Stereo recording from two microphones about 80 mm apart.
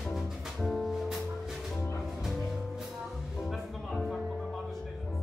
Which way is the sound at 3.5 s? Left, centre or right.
Centre.